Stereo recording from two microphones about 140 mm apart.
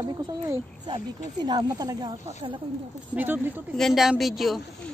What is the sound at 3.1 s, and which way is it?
Speech, 15° right (ahead or behind).